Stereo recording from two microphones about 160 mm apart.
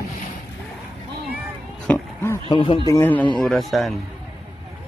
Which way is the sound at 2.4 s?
35° left (ahead or behind).